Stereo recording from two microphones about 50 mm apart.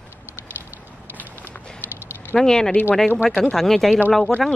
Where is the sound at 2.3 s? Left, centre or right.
Centre.